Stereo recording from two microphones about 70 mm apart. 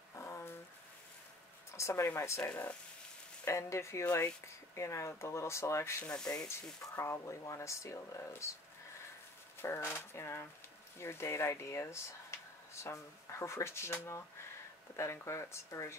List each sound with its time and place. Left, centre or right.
0.1 s a sound: left
1.7 s speech: left
2.4 s speech: left
3.4 s speech: left
9.6 s speech: left
15.0 s speech: left